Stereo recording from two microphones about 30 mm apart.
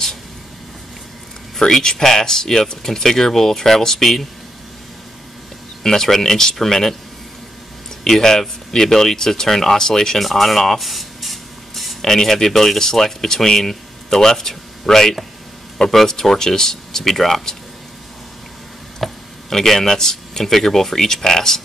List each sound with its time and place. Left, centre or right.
1.7 s speech: centre
5.9 s speech: centre
8.0 s speech: centre
10.2 s spray: centre
12.0 s speech: centre
19.0 s a sound: centre
19.6 s speech: centre